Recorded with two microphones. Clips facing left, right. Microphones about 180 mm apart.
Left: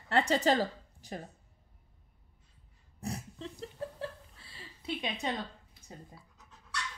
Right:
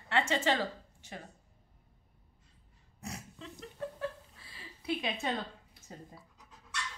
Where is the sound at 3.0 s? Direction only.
35° left (ahead or behind).